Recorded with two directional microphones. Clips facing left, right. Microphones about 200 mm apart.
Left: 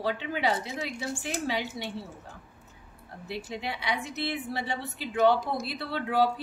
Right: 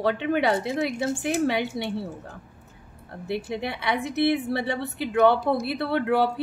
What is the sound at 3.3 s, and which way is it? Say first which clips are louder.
Speech: right 6 dB; 60° right (ahead or behind).